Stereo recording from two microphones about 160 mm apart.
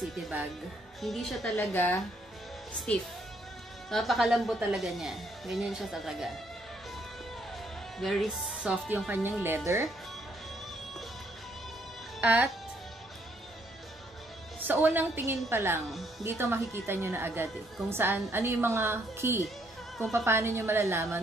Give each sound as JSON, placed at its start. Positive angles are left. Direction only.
{"t": 0.1, "sound": "speech", "side_deg": -10}
{"t": 1.0, "sound": "speech", "side_deg": 0}
{"t": 3.9, "sound": "speech", "side_deg": 0}
{"t": 8.0, "sound": "speech", "side_deg": 0}
{"t": 12.2, "sound": "speech", "side_deg": -10}
{"t": 14.7, "sound": "speech", "side_deg": -10}
{"t": 15.9, "sound": "speech", "side_deg": 0}
{"t": 16.3, "sound": "speech", "side_deg": -15}